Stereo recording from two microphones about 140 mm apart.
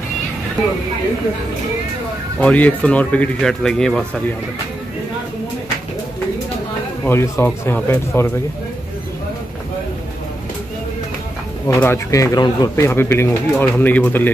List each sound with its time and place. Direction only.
2.4 s speech: 10° left (ahead or behind)
7.1 s speech: 15° left (ahead or behind)
11.6 s speech: 15° left (ahead or behind)